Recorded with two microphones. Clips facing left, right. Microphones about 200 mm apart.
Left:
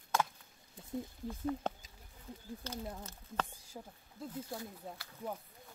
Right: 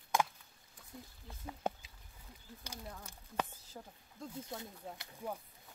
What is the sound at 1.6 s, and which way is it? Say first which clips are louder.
Speech: right 1 dB; 10° right (ahead or behind).